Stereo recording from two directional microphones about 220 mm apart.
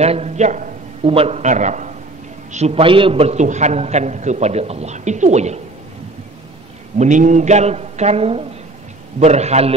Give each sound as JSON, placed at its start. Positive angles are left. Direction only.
{"t": 0.0, "sound": "a man's voice", "side_deg": -30}
{"t": 7.0, "sound": "a man's voice", "side_deg": -35}